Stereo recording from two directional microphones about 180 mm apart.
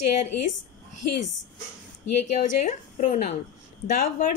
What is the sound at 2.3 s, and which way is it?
Speech, 45° left (ahead or behind).